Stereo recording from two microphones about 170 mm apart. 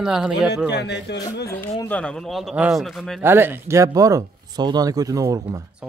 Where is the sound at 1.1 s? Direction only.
80° left.